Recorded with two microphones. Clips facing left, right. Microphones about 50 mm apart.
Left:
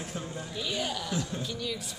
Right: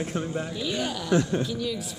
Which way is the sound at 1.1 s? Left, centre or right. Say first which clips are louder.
Right 10 dB; right.